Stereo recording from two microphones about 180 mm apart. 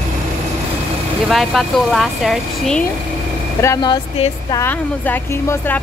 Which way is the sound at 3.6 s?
20° left (ahead or behind).